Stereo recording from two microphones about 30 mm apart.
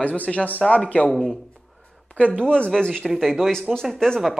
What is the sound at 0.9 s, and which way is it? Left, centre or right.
Speech, left.